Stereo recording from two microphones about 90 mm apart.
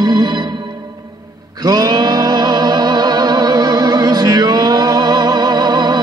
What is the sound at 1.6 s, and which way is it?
Music, 50° right (ahead or behind).